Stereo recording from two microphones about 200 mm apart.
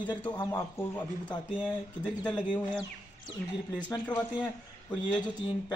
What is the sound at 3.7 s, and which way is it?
Speech, 20° left (ahead or behind).